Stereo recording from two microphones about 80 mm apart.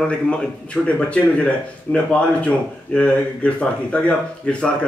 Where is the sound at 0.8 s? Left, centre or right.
Centre.